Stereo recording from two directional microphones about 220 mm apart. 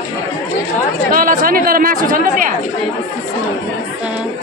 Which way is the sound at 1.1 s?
40° right (ahead or behind).